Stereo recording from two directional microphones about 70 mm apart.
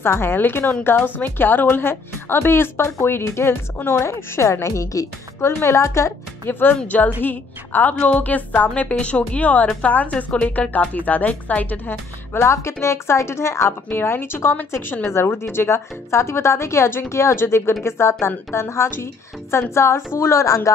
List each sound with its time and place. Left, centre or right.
0.0 s speech: left
6.4 s a woman's voice: left
12.4 s speech: left